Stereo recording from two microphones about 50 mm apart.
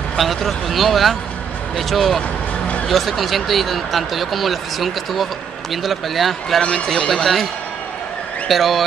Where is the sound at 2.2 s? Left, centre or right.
Left.